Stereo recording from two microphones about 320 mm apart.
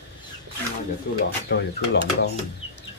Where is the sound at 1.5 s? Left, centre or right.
Left.